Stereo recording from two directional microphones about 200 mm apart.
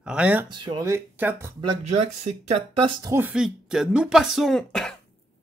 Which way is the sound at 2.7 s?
25° right (ahead or behind).